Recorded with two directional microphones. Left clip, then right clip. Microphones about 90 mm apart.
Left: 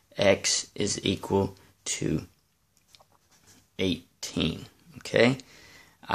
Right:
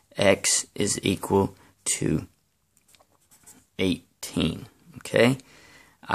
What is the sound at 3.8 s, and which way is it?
Speech, 40° right (ahead or behind).